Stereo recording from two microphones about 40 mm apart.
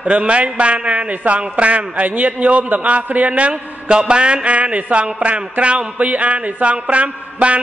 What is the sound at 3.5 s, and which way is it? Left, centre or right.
A man's voice, right.